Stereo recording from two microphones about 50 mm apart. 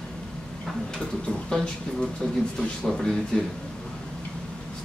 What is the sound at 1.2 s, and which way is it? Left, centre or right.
Speech, centre.